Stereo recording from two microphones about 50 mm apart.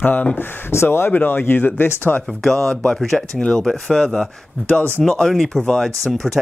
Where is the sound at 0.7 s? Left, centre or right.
Left.